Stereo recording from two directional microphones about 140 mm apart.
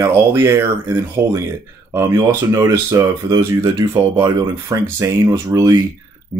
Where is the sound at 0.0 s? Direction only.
20° right (ahead or behind).